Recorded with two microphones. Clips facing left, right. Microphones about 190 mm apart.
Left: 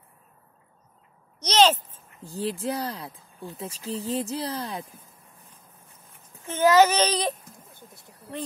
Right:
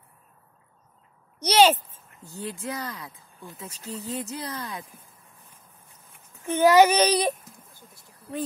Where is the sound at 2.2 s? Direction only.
30° left (ahead or behind).